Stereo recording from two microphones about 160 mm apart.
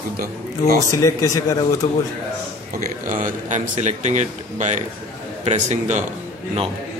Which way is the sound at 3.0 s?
55° right (ahead or behind).